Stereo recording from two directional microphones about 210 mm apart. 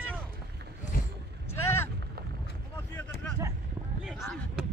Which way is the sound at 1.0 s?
45° left (ahead or behind).